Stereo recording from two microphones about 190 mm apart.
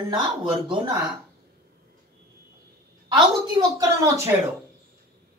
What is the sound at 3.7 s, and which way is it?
Speech, 15° right (ahead or behind).